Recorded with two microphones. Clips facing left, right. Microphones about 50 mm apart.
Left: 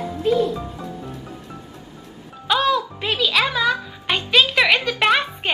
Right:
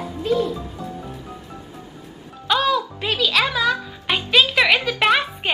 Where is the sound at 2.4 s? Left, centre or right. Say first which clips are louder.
Even; centre.